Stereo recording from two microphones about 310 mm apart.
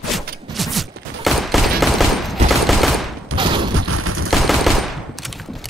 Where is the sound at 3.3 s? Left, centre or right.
Centre.